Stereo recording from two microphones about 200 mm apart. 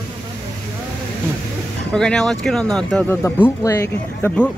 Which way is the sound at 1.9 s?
5° left (ahead or behind).